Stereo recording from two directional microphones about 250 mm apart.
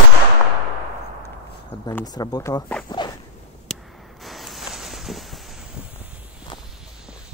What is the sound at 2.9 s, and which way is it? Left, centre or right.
Walk, centre.